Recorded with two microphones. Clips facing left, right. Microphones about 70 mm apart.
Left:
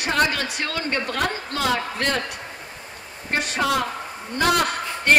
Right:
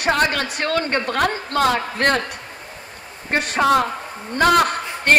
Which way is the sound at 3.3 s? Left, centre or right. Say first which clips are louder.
Right 6 dB; right.